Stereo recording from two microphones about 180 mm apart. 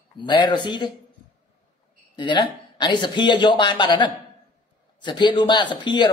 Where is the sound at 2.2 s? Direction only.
25° left (ahead or behind).